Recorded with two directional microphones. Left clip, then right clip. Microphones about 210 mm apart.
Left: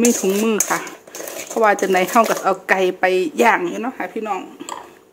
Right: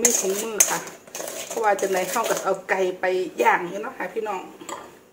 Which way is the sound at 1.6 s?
50° left (ahead or behind).